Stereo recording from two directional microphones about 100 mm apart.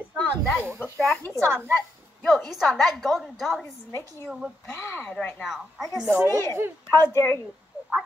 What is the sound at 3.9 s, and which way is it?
A woman's voice, 25° left (ahead or behind).